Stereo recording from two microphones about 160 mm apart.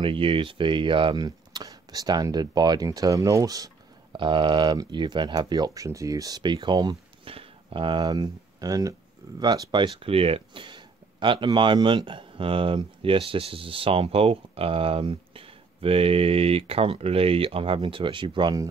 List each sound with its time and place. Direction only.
0.0 s speech: 35° right (ahead or behind)
9.9 s speech: 35° right (ahead or behind)